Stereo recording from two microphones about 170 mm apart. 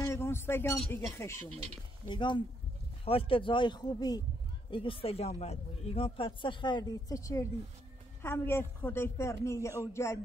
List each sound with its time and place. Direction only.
0.0 s a sound: 15° left (ahead or behind)
0.7 s a woman's voice: 15° left (ahead or behind)
2.0 s a woman's voice: 25° left (ahead or behind)